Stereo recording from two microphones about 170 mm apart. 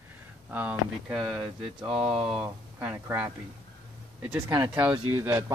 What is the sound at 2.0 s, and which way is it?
Speech, 5° right (ahead or behind).